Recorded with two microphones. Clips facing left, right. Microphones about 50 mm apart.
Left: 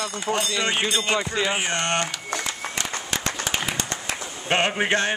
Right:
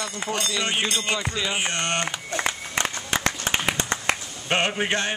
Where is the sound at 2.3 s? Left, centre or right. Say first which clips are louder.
Right 4 dB; right.